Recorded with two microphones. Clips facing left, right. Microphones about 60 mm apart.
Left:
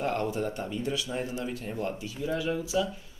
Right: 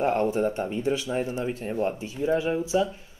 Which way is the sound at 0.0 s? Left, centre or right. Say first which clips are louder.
Right 6 dB; right.